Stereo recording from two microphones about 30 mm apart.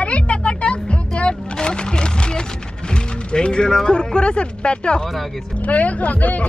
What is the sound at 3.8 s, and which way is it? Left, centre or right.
Speech, left.